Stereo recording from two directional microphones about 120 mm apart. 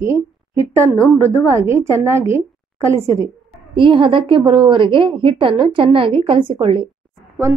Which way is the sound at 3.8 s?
45° right (ahead or behind).